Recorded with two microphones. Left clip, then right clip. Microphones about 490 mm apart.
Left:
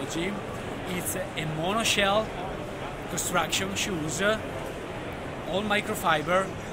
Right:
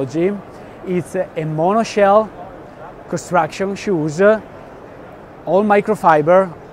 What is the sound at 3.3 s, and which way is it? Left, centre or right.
Speech, right.